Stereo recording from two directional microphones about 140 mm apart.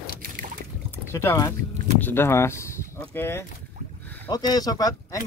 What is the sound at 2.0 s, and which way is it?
Speech, 15° left (ahead or behind).